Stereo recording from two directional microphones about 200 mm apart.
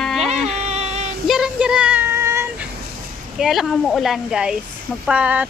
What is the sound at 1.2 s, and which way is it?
Child singing, centre (ahead or behind).